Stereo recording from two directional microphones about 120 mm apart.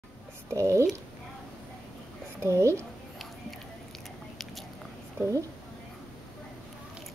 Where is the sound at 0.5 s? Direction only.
25° right (ahead or behind).